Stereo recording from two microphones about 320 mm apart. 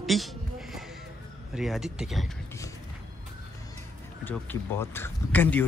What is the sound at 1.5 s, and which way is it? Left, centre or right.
Speech, centre.